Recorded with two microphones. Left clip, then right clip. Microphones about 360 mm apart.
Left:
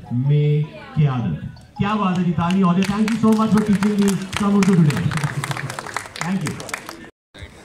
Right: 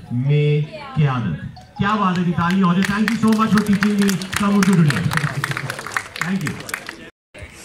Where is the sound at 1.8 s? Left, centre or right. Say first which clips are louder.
Right 3 dB; centre.